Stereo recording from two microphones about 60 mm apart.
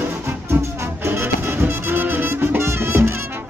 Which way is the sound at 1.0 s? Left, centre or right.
Right.